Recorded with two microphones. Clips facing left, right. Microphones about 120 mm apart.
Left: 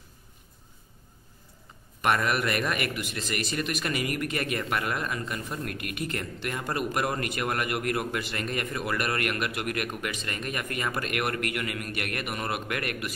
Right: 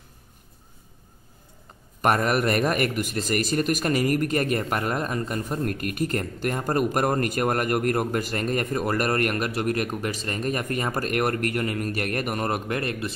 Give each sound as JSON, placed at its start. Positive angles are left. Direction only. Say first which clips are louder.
{"t": 2.0, "sound": "a man's voice", "louder": "right 4 dB", "side_deg": -40}